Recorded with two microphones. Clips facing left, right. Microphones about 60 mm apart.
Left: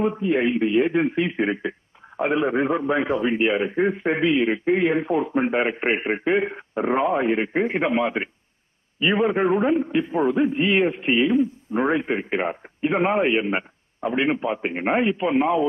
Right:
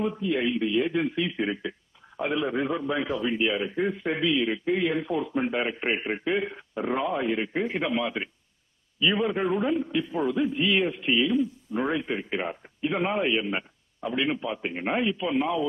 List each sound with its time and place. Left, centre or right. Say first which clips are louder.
0.0 s a man's voice: left 5 dB; left